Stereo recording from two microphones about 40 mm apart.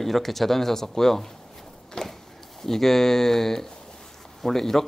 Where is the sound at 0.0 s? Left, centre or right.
Centre.